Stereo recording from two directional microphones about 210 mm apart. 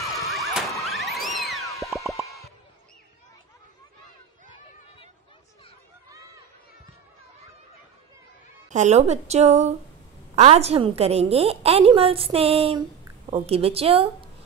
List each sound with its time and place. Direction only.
0.0 s emergency vehicle: centre (ahead or behind)
0.8 s music: centre (ahead or behind)
8.6 s a woman's voice: 35° right (ahead or behind)